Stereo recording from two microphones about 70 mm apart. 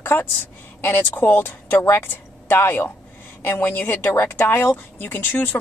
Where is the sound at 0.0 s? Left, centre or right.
Left.